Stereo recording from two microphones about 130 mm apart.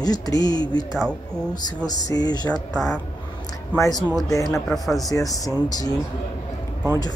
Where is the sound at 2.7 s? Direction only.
5° left (ahead or behind).